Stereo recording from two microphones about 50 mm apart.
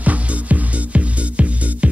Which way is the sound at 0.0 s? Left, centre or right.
Right.